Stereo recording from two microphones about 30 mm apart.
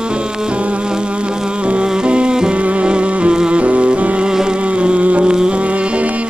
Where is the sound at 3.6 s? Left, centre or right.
Right.